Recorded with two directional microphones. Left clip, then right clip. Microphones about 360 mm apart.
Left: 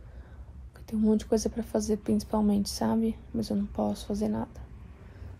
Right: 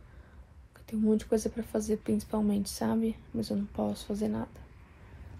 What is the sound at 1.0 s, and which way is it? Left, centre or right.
A woman's voice, centre.